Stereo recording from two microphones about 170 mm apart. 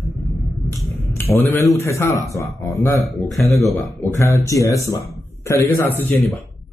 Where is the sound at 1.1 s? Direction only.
15° left (ahead or behind).